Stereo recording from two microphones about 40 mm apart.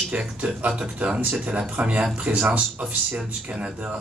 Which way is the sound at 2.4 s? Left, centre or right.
Right.